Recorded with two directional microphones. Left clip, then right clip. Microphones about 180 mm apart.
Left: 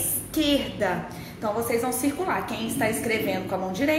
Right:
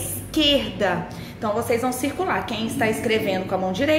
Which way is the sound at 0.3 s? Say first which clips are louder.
Right 5 dB; 35° right (ahead or behind).